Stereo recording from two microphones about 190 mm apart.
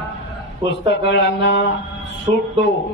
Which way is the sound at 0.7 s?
70° left (ahead or behind).